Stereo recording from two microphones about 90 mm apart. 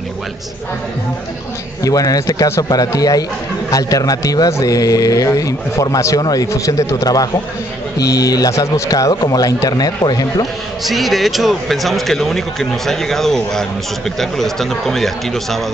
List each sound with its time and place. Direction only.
1.8 s a man's voice: 40° left (ahead or behind)
9.1 s a man's voice: 45° left (ahead or behind)
10.9 s speech: centre (ahead or behind)